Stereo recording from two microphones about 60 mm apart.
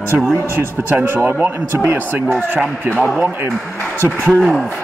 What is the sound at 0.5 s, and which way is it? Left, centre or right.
Speech, right.